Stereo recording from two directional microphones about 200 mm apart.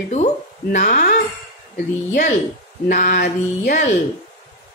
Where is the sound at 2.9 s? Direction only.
40° left (ahead or behind).